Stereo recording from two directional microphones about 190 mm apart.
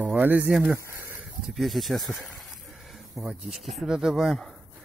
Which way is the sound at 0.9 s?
10° right (ahead or behind).